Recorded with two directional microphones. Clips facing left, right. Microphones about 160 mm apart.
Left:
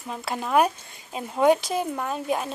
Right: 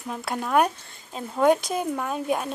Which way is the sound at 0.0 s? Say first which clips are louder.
Right 1 dB; centre (ahead or behind).